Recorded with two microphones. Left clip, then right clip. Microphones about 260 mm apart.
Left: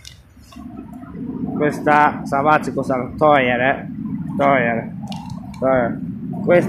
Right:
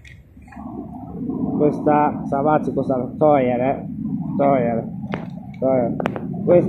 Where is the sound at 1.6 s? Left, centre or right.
Left.